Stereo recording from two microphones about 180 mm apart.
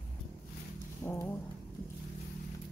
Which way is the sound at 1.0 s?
15° left (ahead or behind).